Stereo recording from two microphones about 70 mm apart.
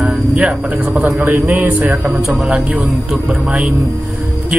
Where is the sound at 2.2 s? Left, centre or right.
Centre.